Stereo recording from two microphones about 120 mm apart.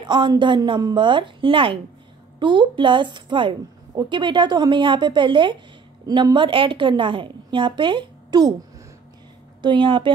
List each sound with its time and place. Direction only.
0.0 s a woman's voice: 40° right (ahead or behind)
9.6 s a woman's voice: 40° right (ahead or behind)